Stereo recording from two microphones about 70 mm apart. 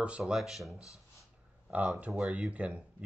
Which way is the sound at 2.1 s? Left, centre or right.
Centre.